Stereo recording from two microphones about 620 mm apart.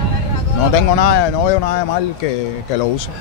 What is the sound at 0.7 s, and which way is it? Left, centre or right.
Speech, left.